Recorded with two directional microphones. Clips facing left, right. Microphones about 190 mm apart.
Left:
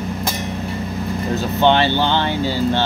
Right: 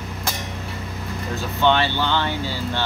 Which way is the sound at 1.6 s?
25° left (ahead or behind).